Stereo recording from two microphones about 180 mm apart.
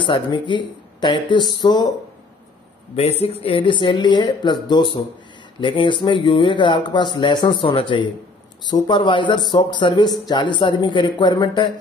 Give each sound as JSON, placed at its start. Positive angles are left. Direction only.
{"t": 0.0, "sound": "speech", "side_deg": 25}
{"t": 3.0, "sound": "speech", "side_deg": 35}